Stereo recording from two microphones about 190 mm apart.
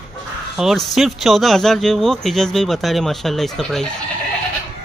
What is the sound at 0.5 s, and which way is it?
Speech, centre (ahead or behind).